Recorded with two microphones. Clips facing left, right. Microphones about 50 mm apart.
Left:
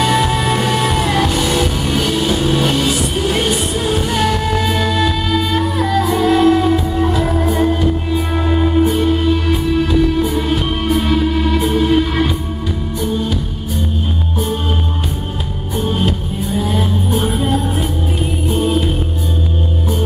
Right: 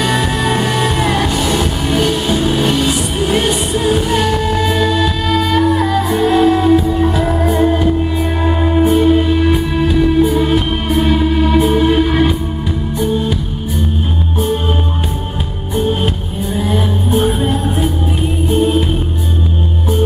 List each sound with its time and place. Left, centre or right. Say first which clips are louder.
0.9 s music: even; centre
4.5 s music: right 2 dB; centre; by 7.9 s right
8.1 s music: right 1 dB; centre
15.7 s music: right 3 dB; centre
18.5 s music: right 3 dB; centre